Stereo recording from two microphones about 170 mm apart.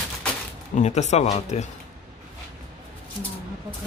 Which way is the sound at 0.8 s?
40° left (ahead or behind).